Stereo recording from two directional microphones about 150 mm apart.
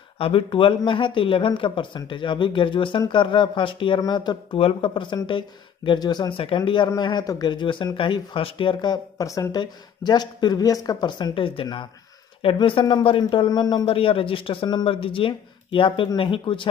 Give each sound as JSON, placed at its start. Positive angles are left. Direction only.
{"t": 0.2, "sound": "speech", "side_deg": 35}